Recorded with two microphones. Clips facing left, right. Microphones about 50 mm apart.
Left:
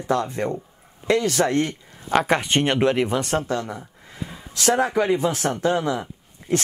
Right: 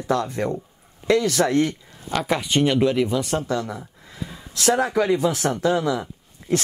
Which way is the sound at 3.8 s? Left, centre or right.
Left.